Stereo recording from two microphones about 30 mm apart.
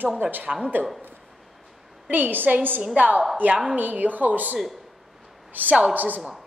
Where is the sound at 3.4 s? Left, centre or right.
Right.